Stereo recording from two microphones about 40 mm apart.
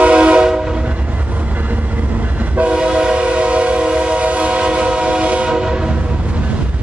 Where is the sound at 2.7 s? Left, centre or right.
Right.